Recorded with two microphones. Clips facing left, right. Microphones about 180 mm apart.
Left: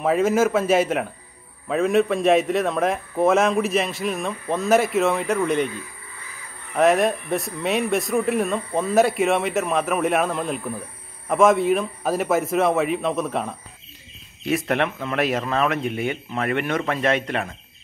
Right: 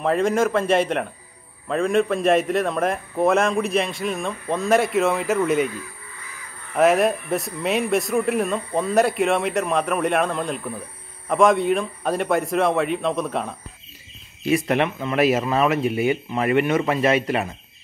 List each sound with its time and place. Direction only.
0.0 s a man's voice: 5° left (ahead or behind)
6.7 s a man's voice: centre (ahead or behind)